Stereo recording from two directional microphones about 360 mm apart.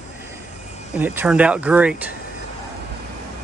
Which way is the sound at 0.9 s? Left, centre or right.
Centre.